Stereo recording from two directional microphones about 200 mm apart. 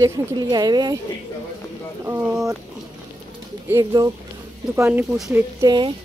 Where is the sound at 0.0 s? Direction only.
20° right (ahead or behind).